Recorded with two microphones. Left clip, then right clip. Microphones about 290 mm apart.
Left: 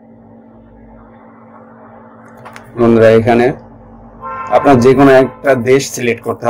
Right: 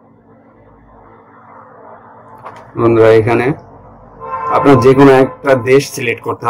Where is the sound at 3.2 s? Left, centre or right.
Left.